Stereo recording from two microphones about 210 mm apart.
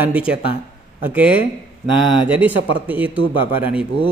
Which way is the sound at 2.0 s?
25° left (ahead or behind).